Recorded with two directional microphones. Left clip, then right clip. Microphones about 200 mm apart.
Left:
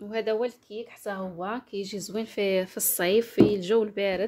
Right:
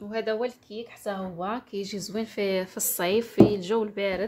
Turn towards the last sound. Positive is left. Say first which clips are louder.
# left 2 dB
turn(degrees=25)  # may be behind; listen again after turning